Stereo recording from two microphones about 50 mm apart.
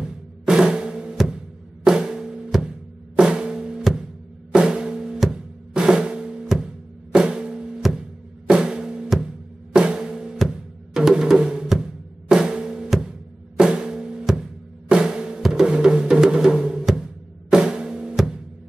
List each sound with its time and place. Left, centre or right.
0.0 s music: centre
1.1 s music: centre
1.9 s drum: centre
3.9 s music: centre
5.2 s drum: centre
9.2 s music: centre
13.6 s drum: centre
15.6 s music: centre